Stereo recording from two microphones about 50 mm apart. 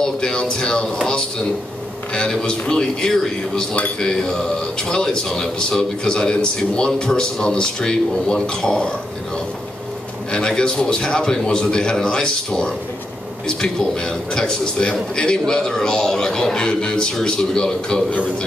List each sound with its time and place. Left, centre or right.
0.0 s a man's voice: centre
2.1 s a man's voice: centre
10.3 s a man's voice: centre